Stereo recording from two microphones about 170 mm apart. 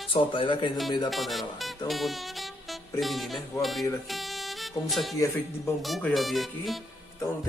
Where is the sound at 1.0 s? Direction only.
Centre (ahead or behind).